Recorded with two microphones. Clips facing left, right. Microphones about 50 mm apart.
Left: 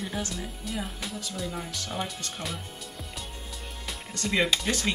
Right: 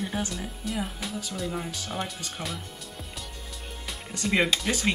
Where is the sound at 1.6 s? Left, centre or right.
Centre.